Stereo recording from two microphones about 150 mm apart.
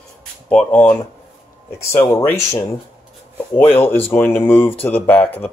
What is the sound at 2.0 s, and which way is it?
Speech, 20° left (ahead or behind).